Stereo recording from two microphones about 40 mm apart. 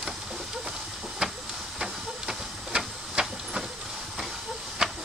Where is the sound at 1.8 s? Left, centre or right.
Centre.